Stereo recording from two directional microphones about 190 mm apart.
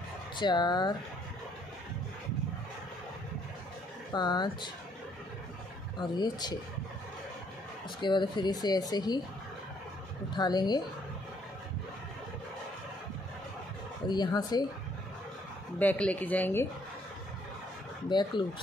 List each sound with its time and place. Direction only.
0.4 s speech: 25° left (ahead or behind)
4.1 s speech: 20° left (ahead or behind)
5.9 s speech: 20° left (ahead or behind)
8.0 s speech: 25° left (ahead or behind)
10.3 s speech: 20° left (ahead or behind)
14.0 s speech: 20° left (ahead or behind)
15.8 s speech: 10° left (ahead or behind)
18.0 s speech: 25° left (ahead or behind)